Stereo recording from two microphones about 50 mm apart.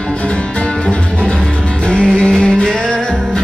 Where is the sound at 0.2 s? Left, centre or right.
Left.